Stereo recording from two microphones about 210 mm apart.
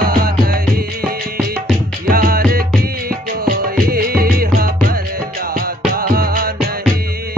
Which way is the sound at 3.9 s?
45° right (ahead or behind).